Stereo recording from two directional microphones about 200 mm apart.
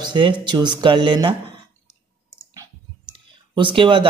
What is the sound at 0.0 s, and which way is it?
Speech, 25° right (ahead or behind).